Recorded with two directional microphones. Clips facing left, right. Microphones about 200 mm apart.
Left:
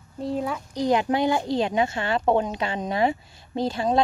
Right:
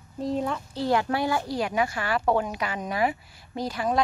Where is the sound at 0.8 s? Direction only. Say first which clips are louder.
Left 3 dB; 20° left (ahead or behind).